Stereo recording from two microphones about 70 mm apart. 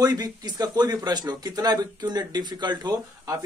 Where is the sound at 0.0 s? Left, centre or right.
Right.